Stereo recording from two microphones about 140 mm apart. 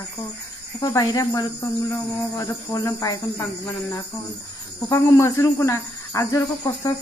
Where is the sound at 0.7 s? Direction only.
25° left (ahead or behind).